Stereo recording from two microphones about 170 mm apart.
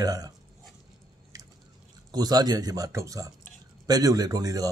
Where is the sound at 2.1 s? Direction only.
25° right (ahead or behind).